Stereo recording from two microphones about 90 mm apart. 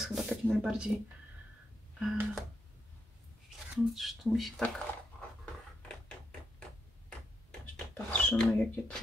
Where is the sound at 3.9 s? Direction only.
Centre (ahead or behind).